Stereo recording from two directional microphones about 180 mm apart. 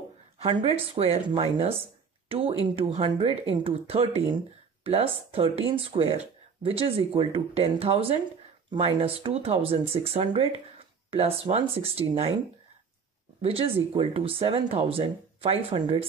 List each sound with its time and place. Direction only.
0.4 s speech: 30° right (ahead or behind)
13.4 s speech: 30° right (ahead or behind)